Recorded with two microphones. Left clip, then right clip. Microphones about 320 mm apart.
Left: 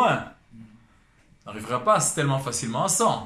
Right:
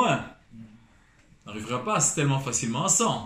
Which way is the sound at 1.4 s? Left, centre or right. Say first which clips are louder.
Left 7 dB; centre.